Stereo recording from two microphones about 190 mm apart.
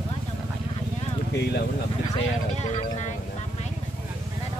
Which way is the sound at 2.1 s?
35° left (ahead or behind).